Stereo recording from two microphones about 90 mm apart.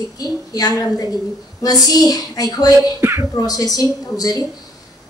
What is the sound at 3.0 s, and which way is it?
Speech, 30° right (ahead or behind).